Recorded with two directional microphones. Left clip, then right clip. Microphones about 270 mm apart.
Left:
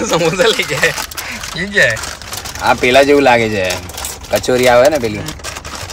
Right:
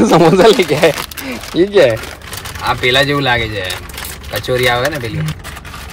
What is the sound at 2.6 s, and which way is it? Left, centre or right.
Speech, left.